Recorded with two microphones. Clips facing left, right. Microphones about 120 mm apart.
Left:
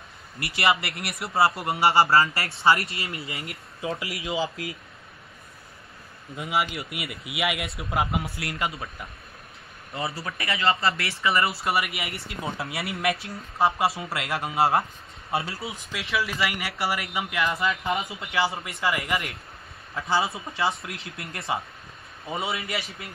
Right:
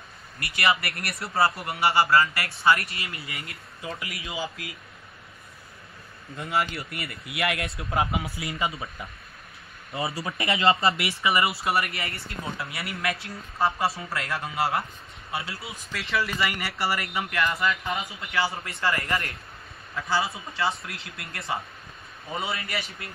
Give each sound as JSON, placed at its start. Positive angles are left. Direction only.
{"t": 0.4, "sound": "a man's voice", "side_deg": 25}
{"t": 6.3, "sound": "speech", "side_deg": 5}
{"t": 10.0, "sound": "speech", "side_deg": -20}
{"t": 11.6, "sound": "speech", "side_deg": 5}
{"t": 12.5, "sound": "a man's voice", "side_deg": 20}
{"t": 14.1, "sound": "a man's voice", "side_deg": 15}
{"t": 15.9, "sound": "speech", "side_deg": 0}
{"t": 17.5, "sound": "a man's voice", "side_deg": 25}
{"t": 18.7, "sound": "speech", "side_deg": 5}
{"t": 20.0, "sound": "a man's voice", "side_deg": 25}